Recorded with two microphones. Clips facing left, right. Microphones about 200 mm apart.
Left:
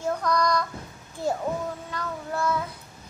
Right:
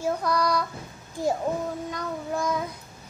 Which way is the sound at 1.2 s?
15° right (ahead or behind).